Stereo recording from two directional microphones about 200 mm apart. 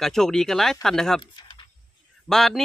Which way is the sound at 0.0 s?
Centre (ahead or behind).